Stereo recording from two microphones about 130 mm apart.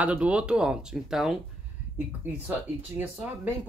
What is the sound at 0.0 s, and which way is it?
Speech, 10° right (ahead or behind).